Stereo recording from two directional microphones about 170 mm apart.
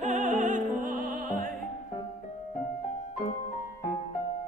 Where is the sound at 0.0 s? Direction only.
45° right (ahead or behind).